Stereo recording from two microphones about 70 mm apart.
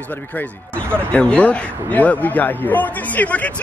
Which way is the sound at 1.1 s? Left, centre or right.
Centre.